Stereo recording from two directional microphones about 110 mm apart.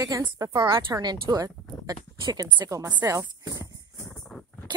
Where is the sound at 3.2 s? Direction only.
35° right (ahead or behind).